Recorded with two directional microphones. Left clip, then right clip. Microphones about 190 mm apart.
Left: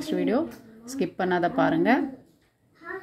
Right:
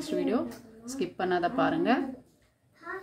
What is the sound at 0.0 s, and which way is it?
Speech, 15° left (ahead or behind).